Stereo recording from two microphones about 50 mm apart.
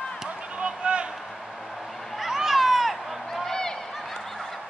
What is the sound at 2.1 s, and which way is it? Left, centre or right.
Cat, centre.